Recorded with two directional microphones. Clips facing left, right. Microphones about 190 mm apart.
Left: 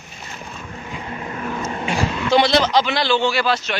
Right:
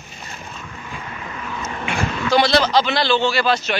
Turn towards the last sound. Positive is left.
turn(degrees=10)  # may be behind; listen again after turning